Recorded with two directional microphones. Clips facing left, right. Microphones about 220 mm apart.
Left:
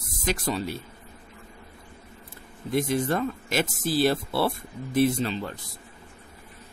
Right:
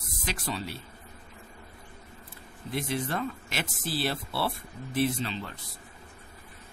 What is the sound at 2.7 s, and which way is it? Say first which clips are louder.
Speech: left 7 dB; 45° left (ahead or behind).